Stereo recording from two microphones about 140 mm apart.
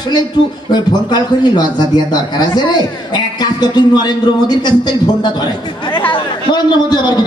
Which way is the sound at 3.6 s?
30° left (ahead or behind).